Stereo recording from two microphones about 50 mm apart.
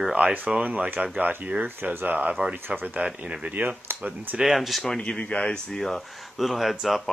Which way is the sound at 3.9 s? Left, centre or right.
Right.